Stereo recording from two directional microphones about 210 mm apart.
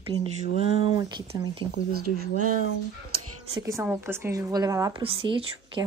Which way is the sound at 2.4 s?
40° right (ahead or behind).